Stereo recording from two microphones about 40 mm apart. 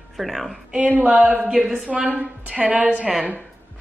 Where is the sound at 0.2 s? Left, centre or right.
Centre.